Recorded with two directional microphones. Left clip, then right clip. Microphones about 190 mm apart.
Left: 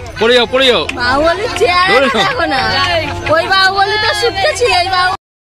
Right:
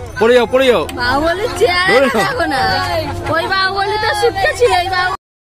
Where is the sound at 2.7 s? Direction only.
25° right (ahead or behind).